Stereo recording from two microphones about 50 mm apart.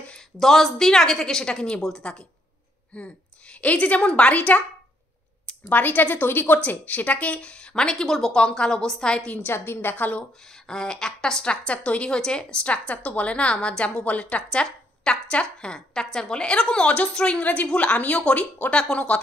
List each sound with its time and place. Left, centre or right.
0.4 s a woman's voice: centre
2.9 s a woman's voice: left
5.7 s a woman's voice: left
7.3 s a woman's voice: centre
9.5 s a woman's voice: left
9.9 s a woman's voice: left
10.5 s a woman's voice: centre
14.5 s a woman's voice: centre